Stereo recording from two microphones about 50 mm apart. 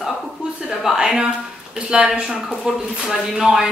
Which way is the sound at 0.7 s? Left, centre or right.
Centre.